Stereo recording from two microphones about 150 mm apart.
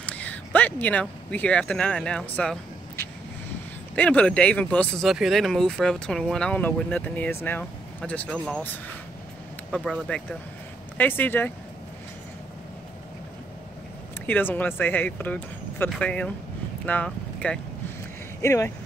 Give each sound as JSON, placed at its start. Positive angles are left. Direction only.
{"t": 0.0, "sound": "speech", "side_deg": 10}
{"t": 5.0, "sound": "speech", "side_deg": 0}
{"t": 14.2, "sound": "speech", "side_deg": 10}